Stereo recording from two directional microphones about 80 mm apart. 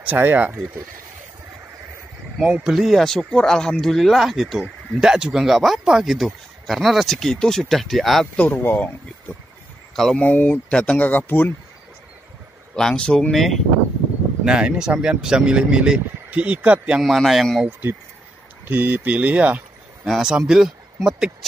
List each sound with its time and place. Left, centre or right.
0.0 s speech: right
2.4 s speech: centre
2.7 s speech: centre
8.4 s speech: left
9.9 s speech: centre
10.2 s speech: left
12.7 s speech: centre
14.4 s speech: centre
17.0 s speech: centre
18.7 s speech: right
20.1 s speech: centre